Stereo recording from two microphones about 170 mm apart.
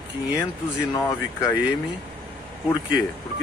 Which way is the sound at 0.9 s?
20° left (ahead or behind).